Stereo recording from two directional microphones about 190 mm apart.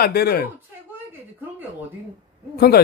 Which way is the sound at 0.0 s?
55° left (ahead or behind).